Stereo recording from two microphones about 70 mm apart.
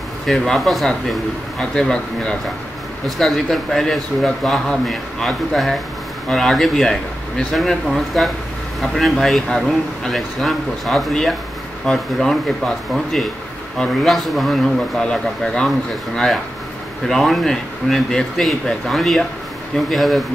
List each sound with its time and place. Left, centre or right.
0.3 s speech: centre
17.1 s speech: centre